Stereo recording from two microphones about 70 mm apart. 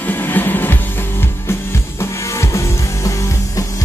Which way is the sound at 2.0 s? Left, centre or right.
Left.